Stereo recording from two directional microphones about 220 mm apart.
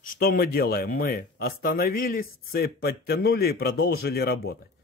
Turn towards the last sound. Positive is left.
turn(degrees=45)  # may be behind; listen again after turning